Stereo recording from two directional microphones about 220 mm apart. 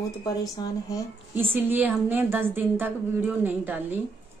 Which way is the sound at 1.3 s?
10° right (ahead or behind).